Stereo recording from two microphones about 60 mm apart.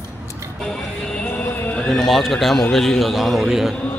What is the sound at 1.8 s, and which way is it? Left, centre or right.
A man's voice, centre.